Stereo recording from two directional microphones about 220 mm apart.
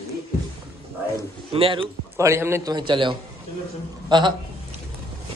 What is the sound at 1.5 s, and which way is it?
Speech, 25° right (ahead or behind).